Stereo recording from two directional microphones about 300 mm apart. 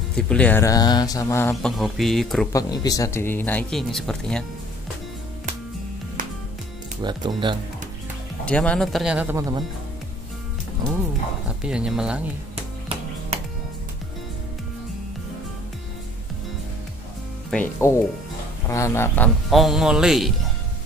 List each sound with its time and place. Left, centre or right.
0.1 s speech: centre
2.5 s speech: centre
7.0 s speech: centre
8.5 s a man's voice: centre
11.6 s a man's voice: centre
13.3 s music: centre
17.5 s a man's voice: centre